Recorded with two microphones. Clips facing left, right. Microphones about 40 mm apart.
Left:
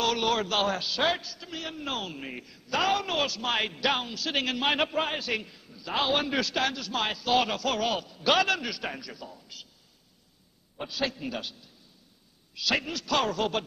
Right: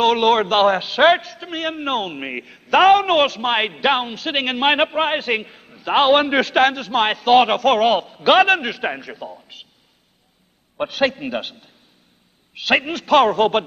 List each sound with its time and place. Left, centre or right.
0.0 s a man's voice: right
10.8 s a man's voice: right